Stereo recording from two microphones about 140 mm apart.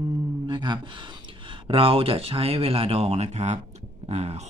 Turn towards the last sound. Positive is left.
turn(degrees=-50)  # may be behind; listen again after turning